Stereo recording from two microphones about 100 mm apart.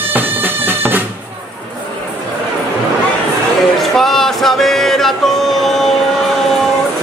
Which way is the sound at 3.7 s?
5° left (ahead or behind).